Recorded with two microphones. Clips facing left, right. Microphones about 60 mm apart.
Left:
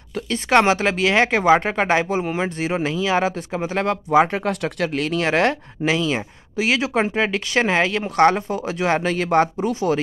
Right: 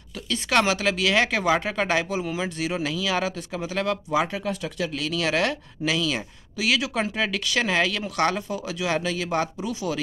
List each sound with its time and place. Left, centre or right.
0.1 s speech: left
4.5 s speech: left
5.0 s speech: left